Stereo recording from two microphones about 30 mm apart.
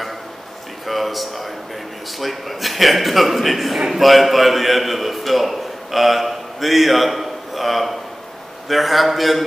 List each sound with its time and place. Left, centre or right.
0.8 s a man's voice: centre